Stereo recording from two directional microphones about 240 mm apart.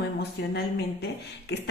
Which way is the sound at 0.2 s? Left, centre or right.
Left.